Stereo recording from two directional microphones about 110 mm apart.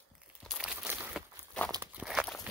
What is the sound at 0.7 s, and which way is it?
Crumpling, 15° right (ahead or behind).